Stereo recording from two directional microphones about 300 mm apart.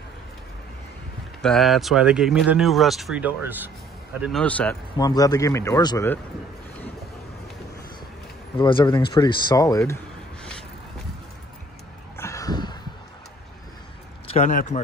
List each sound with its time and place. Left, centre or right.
1.4 s a man's voice: centre
8.5 s a man's voice: centre
12.2 s a sound: centre
14.2 s a man's voice: left